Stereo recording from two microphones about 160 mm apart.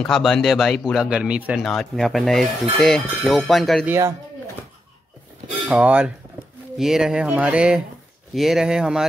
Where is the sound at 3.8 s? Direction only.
15° right (ahead or behind).